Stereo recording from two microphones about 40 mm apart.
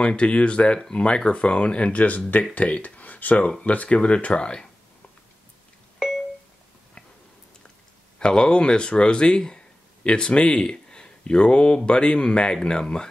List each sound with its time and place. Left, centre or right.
0.0 s speech: left
0.7 s speech: centre
5.9 s a sound: centre
8.2 s speech: left